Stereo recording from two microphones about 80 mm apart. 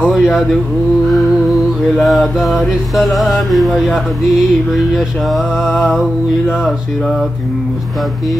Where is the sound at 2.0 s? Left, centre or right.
Centre.